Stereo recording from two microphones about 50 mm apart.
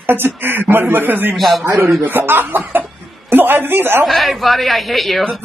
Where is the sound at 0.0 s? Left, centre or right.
Right.